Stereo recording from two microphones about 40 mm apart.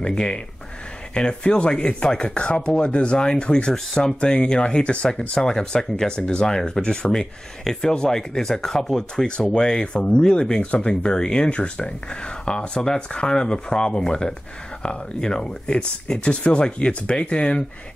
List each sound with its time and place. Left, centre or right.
0.0 s speech: left
3.7 s speech: centre
4.2 s speech: left
6.4 s speech: centre